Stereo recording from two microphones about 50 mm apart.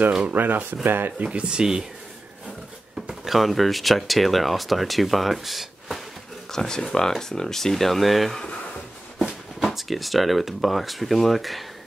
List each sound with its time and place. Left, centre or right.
0.3 s speech: right
1.1 s speech: right
3.1 s speech: centre
6.5 s speech: centre
9.6 s speech: centre